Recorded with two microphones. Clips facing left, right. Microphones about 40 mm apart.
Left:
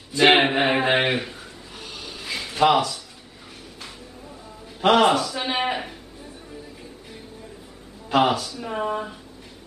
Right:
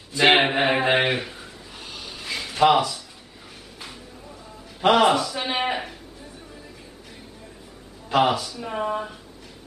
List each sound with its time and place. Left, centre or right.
0.1 s a sound: centre
4.8 s a man's voice: centre
8.1 s a man's voice: centre